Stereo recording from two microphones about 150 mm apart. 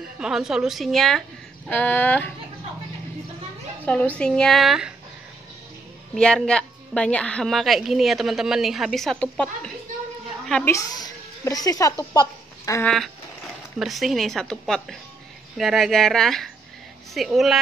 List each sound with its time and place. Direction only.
0.2 s a woman's voice: 5° right (ahead or behind)
1.7 s speech: 10° left (ahead or behind)
3.8 s a child's voice: 10° left (ahead or behind)
6.1 s a woman's voice: 5° left (ahead or behind)
10.7 s speech: 25° left (ahead or behind)
12.8 s a woman's voice: centre (ahead or behind)